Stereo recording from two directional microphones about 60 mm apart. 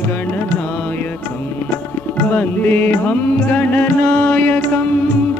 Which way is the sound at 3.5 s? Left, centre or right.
Left.